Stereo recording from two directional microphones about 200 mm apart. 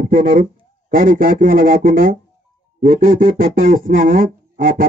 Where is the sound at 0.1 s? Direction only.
45° right (ahead or behind).